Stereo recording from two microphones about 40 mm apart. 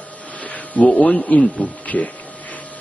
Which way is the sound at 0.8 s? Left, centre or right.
Left.